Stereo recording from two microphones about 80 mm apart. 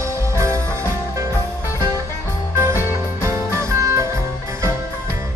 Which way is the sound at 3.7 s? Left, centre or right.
Right.